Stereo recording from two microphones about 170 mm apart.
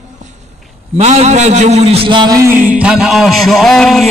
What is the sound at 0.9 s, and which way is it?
A man's voice, 40° right (ahead or behind).